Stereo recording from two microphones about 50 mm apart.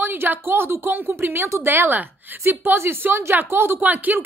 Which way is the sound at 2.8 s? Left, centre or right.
Right.